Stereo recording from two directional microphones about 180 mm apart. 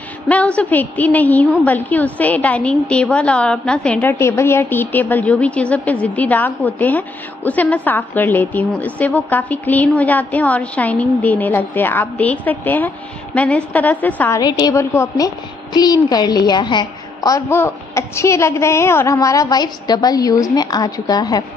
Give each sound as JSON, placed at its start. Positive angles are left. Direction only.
{"t": 0.3, "sound": "a woman's voice", "side_deg": 10}